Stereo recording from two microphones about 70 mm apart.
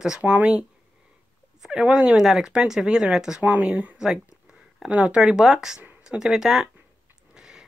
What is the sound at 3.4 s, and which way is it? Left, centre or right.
Speech, right.